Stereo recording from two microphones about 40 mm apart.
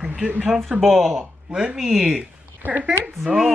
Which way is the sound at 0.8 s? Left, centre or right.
Centre.